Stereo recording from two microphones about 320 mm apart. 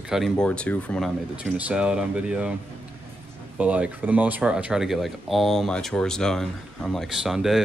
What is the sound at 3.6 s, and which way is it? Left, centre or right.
Speech, centre.